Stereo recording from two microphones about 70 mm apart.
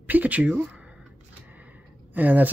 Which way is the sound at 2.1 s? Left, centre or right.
Right.